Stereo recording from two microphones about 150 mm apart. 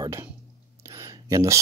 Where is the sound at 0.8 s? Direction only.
20° right (ahead or behind).